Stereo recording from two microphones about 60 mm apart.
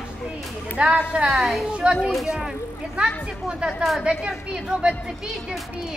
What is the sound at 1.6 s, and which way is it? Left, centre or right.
A woman's voice, centre.